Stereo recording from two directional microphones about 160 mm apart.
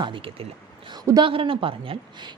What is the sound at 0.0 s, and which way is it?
Speech, 35° right (ahead or behind).